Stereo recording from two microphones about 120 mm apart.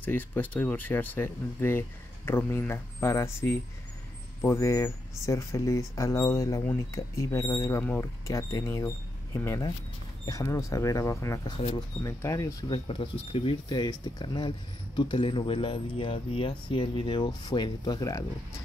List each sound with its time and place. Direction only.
0.0 s speech: 15° left (ahead or behind)
12.6 s speech: 45° left (ahead or behind)